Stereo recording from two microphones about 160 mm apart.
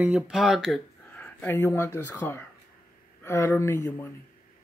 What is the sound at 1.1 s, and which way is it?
Speech, 10° left (ahead or behind).